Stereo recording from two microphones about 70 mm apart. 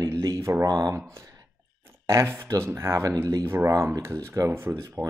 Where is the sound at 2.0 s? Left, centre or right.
Right.